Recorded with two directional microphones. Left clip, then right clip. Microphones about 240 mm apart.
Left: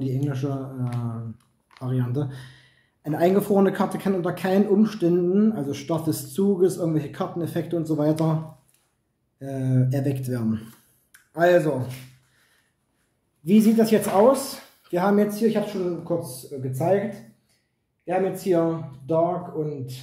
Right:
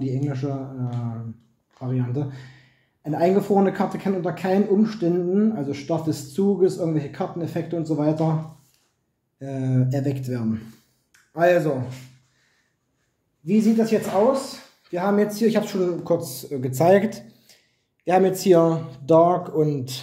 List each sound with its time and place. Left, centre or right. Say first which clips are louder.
0.0 s speech: right 1 dB; centre
9.4 s speech: right 1 dB; centre
11.1 s a sound: right 1 dB; centre
13.5 s speech: left 1 dB; centre
15.1 s speech: right 1 dB; centre
15.4 s speech: right 2 dB; right
16.7 s speech: right 6 dB; right
17.5 s a sound: right 13 dB; right
18.0 s speech: right 6 dB; right